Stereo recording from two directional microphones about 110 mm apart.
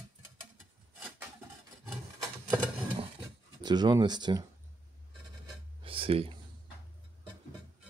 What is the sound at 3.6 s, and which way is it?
Dishes, 40° right (ahead or behind).